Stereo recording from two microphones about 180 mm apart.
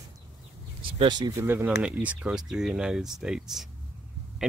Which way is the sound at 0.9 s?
25° right (ahead or behind).